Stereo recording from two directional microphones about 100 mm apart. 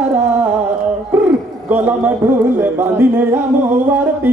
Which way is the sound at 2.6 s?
20° right (ahead or behind).